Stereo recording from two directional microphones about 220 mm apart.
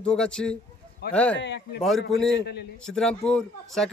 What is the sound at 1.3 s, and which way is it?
A man's voice, 55° left (ahead or behind).